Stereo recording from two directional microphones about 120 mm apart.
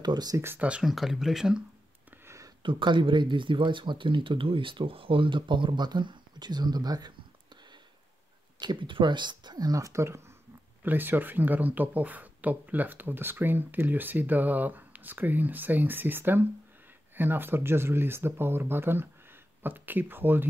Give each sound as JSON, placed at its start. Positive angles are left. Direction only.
{"t": 0.0, "sound": "speech", "side_deg": -35}
{"t": 0.4, "sound": "speech", "side_deg": -15}
{"t": 2.2, "sound": "a sound", "side_deg": -25}
{"t": 2.6, "sound": "speech", "side_deg": -40}
{"t": 8.5, "sound": "speech", "side_deg": -40}